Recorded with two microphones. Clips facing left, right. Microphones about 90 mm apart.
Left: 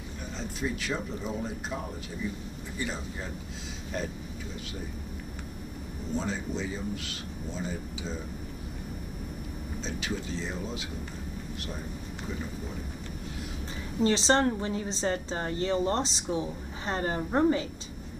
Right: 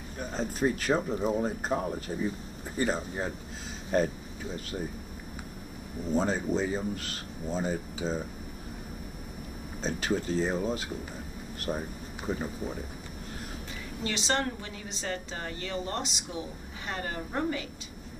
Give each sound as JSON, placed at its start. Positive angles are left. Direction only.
{"t": 0.2, "sound": "speech", "side_deg": -45}
{"t": 6.1, "sound": "speech", "side_deg": -40}
{"t": 9.8, "sound": "speech", "side_deg": -45}
{"t": 12.3, "sound": "speech", "side_deg": -40}
{"t": 14.0, "sound": "a woman's voice", "side_deg": 30}